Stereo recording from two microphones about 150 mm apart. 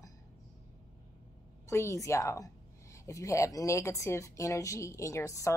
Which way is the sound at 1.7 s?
20° left (ahead or behind).